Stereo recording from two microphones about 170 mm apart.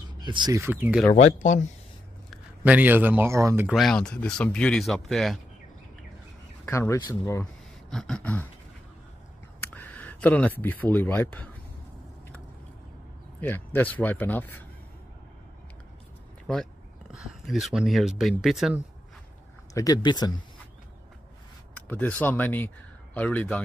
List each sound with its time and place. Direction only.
0.2 s speech: 25° right (ahead or behind); by 1.0 s 10° right (ahead or behind)
1.1 s speech: 45° left (ahead or behind)
2.3 s a man's voice: 10° right (ahead or behind)
3.7 s speech: centre (ahead or behind)
6.6 s speech: 15° left (ahead or behind)
7.9 s speech: 5° left (ahead or behind)
9.6 s speech: 10° left (ahead or behind)
13.4 s speech: 10° left (ahead or behind)
16.5 s speech: 5° left (ahead or behind)
19.7 s speech: 20° left (ahead or behind)
21.8 s speech: 10° left (ahead or behind)